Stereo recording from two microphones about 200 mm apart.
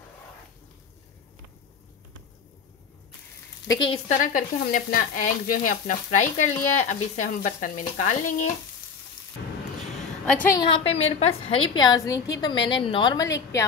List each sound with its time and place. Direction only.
3.9 s frying: 35° left (ahead or behind)
10.5 s a woman's voice: 25° left (ahead or behind)